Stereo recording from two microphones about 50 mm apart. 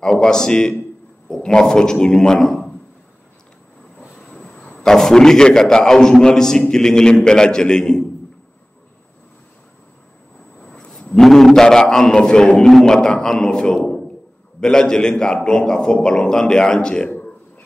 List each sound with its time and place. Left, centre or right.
0.0 s a man's voice: centre
4.7 s a man's voice: centre
10.9 s a man's voice: centre
12.5 s a man's voice: centre
13.7 s a sound: centre
14.6 s a man's voice: centre